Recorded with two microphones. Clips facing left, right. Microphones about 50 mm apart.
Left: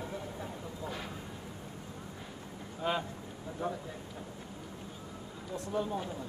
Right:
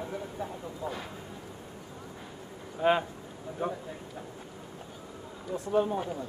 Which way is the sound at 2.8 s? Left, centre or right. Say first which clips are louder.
Right 8 dB; right.